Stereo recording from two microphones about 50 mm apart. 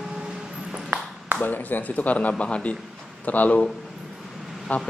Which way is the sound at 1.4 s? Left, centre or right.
Left.